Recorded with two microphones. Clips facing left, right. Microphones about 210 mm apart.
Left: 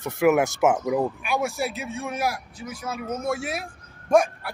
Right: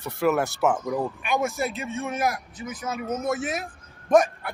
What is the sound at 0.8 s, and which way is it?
Speech, 5° left (ahead or behind).